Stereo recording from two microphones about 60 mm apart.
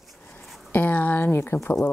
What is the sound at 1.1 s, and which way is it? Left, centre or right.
Speech, left.